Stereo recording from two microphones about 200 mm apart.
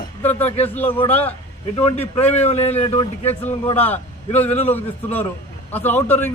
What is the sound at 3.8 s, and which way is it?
A man's voice, 10° left (ahead or behind).